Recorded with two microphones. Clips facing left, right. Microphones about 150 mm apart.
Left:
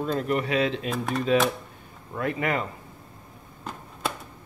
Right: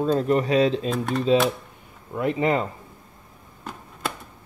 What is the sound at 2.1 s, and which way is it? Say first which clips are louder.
Speech: right 5 dB; 20° right (ahead or behind).